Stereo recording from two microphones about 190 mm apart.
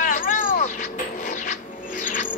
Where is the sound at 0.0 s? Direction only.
40° left (ahead or behind).